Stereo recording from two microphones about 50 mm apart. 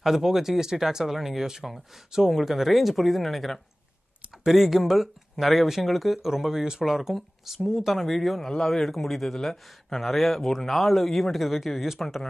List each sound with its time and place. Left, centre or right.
0.0 s speech: centre